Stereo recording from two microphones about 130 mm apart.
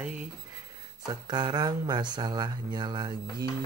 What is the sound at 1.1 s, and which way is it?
Speech, 30° right (ahead or behind).